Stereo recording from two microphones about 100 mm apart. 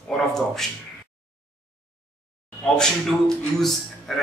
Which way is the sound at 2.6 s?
5° left (ahead or behind).